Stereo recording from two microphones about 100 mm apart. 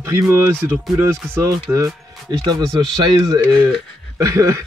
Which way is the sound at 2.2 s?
40° right (ahead or behind).